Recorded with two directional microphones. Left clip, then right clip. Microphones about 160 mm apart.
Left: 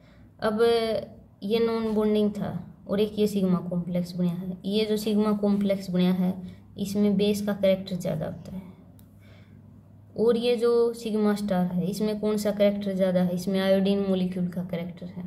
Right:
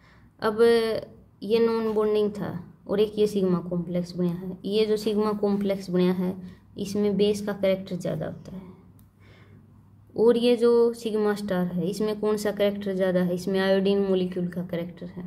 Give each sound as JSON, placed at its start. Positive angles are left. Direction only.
{"t": 0.4, "sound": "speech", "side_deg": -25}
{"t": 10.1, "sound": "speech", "side_deg": -25}